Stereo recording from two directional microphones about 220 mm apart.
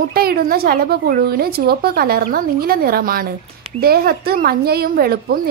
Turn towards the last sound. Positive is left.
turn(degrees=-45)  # may be behind; listen again after turning